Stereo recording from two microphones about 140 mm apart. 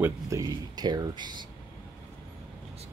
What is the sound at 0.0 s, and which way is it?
Speech, 25° right (ahead or behind).